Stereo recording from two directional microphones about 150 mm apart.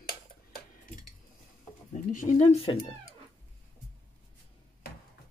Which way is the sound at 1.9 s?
55° left (ahead or behind).